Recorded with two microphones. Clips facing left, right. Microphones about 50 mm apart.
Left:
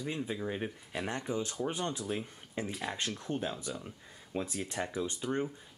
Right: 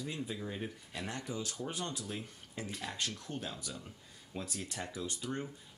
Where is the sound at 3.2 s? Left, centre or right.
Left.